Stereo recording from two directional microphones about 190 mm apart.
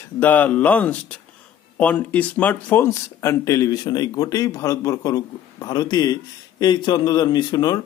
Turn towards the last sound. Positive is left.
turn(degrees=20)  # may be behind; listen again after turning